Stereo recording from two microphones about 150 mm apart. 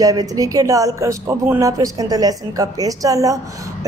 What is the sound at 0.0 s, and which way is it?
A woman's voice, 25° right (ahead or behind).